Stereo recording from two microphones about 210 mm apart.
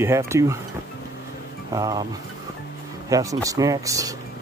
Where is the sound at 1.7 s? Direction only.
15° right (ahead or behind).